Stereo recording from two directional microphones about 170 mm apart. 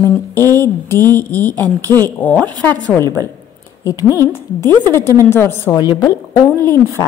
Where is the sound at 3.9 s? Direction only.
20° left (ahead or behind).